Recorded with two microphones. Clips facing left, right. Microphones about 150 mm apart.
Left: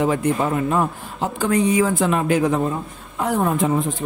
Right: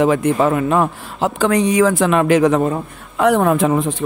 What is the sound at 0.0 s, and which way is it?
Speech, 90° right.